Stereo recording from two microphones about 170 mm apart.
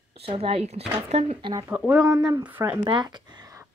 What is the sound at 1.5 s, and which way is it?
Speech, 20° right (ahead or behind).